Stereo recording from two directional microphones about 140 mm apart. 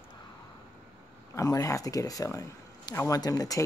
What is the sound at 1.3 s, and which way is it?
Speech, 25° left (ahead or behind).